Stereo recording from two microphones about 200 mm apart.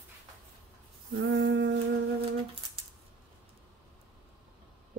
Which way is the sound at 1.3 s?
70° right (ahead or behind).